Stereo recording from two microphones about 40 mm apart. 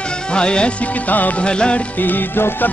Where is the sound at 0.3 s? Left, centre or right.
Left.